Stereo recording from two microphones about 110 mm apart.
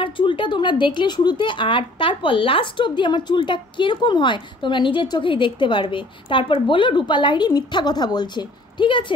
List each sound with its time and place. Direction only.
0.0 s a woman's voice: 50° left (ahead or behind)